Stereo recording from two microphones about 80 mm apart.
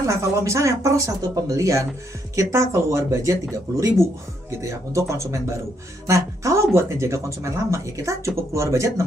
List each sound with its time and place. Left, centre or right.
0.0 s speech: right